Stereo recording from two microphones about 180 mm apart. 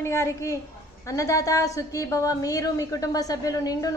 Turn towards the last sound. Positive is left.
turn(degrees=20)  # may be behind; listen again after turning